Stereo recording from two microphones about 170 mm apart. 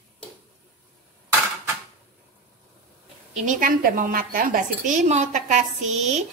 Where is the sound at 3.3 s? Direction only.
50° right (ahead or behind).